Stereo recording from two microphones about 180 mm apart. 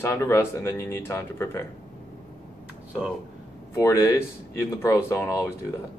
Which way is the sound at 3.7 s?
15° left (ahead or behind).